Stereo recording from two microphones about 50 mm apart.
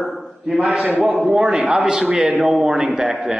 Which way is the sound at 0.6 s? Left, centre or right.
Centre.